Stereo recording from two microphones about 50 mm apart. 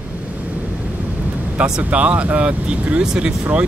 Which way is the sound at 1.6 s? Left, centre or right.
Right.